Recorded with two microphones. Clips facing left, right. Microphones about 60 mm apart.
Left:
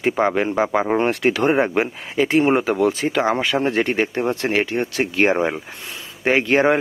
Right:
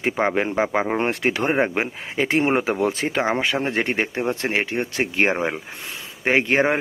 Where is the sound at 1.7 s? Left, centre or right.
Right.